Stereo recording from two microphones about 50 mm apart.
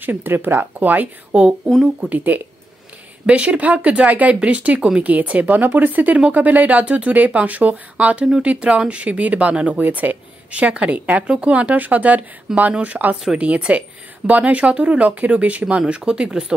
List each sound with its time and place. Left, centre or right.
0.0 s speech: right
1.3 s speech: right
3.3 s a woman's voice: right
12.5 s speech: centre
12.8 s a woman's voice: right
15.9 s speech: centre